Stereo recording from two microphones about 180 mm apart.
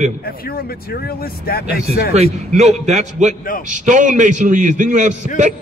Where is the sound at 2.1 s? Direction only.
35° right (ahead or behind).